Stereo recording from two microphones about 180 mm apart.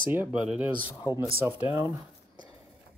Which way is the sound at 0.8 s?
25° left (ahead or behind).